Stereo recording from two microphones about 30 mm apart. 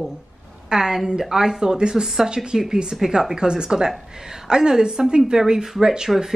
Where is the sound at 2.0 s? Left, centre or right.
Centre.